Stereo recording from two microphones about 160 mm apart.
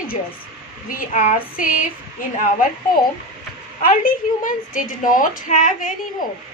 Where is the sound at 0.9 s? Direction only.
55° left (ahead or behind).